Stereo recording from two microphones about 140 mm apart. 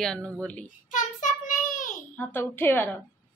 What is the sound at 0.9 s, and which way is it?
Child singing, 65° left (ahead or behind).